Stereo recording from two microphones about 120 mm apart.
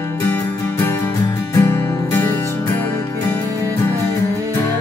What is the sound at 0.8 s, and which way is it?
Music, 25° left (ahead or behind).